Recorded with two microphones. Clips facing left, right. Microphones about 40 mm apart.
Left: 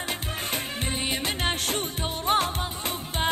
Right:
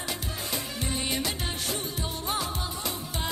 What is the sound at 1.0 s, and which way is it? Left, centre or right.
Music, left.